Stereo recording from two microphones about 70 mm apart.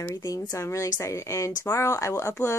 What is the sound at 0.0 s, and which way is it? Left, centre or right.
A woman's voice, left.